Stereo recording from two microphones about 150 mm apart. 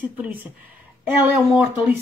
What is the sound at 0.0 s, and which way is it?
Speech, 10° right (ahead or behind).